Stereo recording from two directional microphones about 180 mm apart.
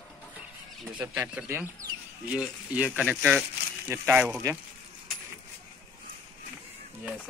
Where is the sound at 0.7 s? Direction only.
Centre (ahead or behind).